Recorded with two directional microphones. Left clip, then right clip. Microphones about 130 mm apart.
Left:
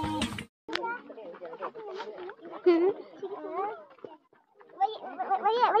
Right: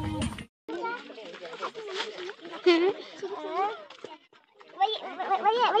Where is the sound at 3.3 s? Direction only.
60° right (ahead or behind).